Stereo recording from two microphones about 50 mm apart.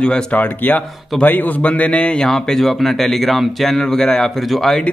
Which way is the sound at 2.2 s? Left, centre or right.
Centre.